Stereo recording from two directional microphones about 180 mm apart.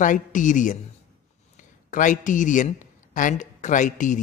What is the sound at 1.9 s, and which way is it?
Speech, 45° left (ahead or behind).